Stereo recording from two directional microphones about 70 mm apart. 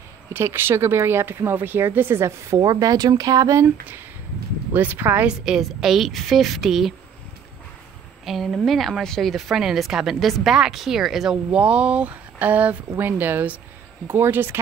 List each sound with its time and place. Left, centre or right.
0.3 s speech: right
2.6 s speech: right
4.7 s speech: right
5.2 s a woman's voice: centre
8.3 s speech: centre
11.5 s speech: centre; by 14.6 s right